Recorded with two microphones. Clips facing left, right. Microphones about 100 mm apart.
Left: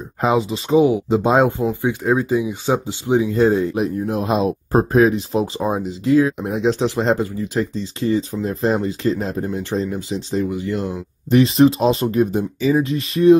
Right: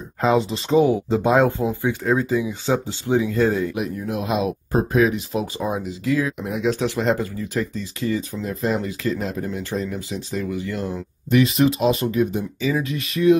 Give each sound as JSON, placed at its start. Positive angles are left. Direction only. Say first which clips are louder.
{"t": 0.4, "sound": "speech", "louder": "left 2 dB", "side_deg": 5}
{"t": 0.7, "sound": "speech", "louder": "left 2 dB", "side_deg": 15}
{"t": 3.7, "sound": "speech", "louder": "left 5 dB", "side_deg": 35}
{"t": 11.2, "sound": "speech", "louder": "left 4 dB", "side_deg": 30}